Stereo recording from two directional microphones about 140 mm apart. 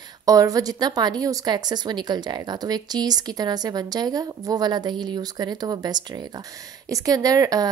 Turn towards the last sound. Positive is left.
turn(degrees=-25)  # may be behind; listen again after turning